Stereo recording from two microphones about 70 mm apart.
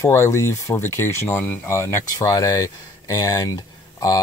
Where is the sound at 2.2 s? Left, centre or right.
Left.